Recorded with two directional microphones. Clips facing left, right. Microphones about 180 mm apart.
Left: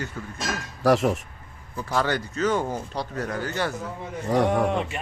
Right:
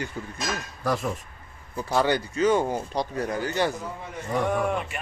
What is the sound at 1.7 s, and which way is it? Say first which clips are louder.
Speech: right 2 dB; 15° right (ahead or behind).